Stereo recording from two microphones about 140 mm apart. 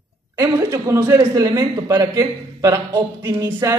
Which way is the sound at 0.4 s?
20° right (ahead or behind).